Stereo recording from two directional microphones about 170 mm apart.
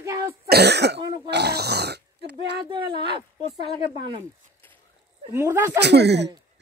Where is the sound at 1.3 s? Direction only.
75° right (ahead or behind).